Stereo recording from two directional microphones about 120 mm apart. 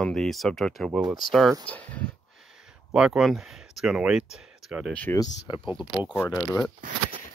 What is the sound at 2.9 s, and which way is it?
Speech, 5° right (ahead or behind).